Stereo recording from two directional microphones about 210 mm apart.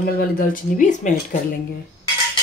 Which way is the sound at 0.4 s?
40° left (ahead or behind).